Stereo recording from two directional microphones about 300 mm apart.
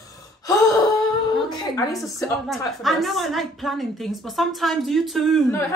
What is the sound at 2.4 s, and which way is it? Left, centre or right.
A woman's voice, centre.